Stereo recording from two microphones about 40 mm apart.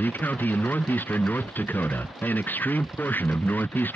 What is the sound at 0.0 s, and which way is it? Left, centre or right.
Speech, left.